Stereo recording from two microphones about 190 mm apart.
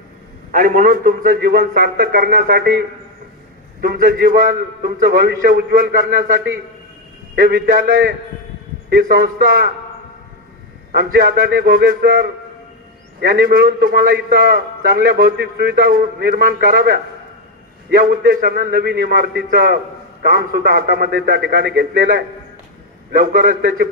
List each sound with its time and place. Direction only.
0.5 s a man's voice: 45° right (ahead or behind)
3.8 s a man's voice: 55° right (ahead or behind)
7.3 s a man's voice: 55° right (ahead or behind)
10.9 s a man's voice: 55° right (ahead or behind)